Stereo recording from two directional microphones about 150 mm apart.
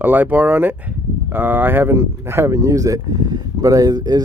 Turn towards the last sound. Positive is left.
turn(degrees=-25)  # may be behind; listen again after turning